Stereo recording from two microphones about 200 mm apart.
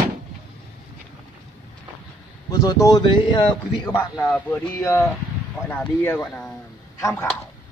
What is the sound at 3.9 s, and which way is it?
Speech, 10° left (ahead or behind).